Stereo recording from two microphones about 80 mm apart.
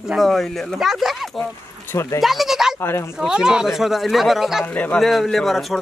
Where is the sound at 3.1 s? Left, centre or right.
Centre.